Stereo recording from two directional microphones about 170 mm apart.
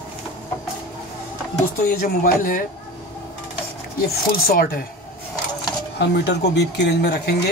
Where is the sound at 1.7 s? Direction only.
55° left (ahead or behind).